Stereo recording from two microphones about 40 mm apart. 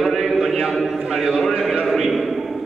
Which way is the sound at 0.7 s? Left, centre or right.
Centre.